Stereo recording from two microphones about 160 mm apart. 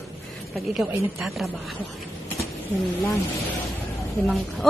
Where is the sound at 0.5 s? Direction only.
Centre (ahead or behind).